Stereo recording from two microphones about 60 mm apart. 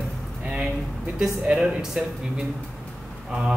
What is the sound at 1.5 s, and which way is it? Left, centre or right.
Speech, centre.